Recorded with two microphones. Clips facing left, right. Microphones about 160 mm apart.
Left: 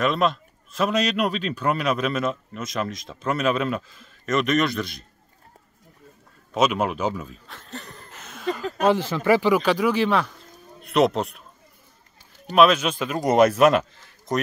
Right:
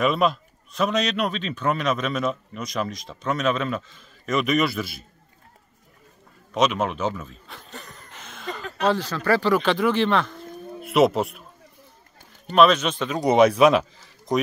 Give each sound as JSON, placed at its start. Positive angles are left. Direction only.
{"t": 0.0, "sound": "speech", "side_deg": -5}
{"t": 6.5, "sound": "speech", "side_deg": 5}
{"t": 7.4, "sound": "a sound", "side_deg": 0}
{"t": 8.8, "sound": "speech", "side_deg": 20}
{"t": 12.4, "sound": "speech", "side_deg": 5}